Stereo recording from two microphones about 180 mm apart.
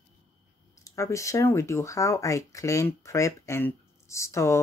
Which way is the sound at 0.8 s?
15° left (ahead or behind).